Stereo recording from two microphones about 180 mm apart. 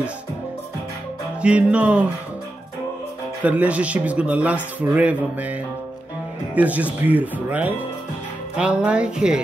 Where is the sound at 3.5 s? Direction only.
10° right (ahead or behind).